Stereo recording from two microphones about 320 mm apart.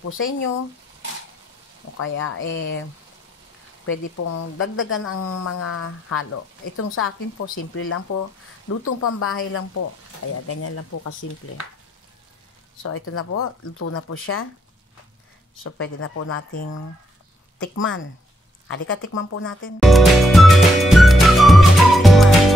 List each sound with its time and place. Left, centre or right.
0.1 s speech: left
2.0 s speech: left
4.2 s speech: left
4.7 s speech: left
12.8 s speech: left
15.6 s speech: left
17.7 s speech: left
19.8 s music: centre